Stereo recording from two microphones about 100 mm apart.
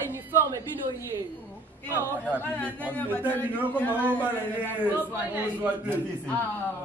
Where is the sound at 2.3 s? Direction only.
20° left (ahead or behind).